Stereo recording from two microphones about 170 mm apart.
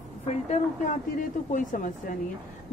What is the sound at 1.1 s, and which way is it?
Speech, 50° left (ahead or behind).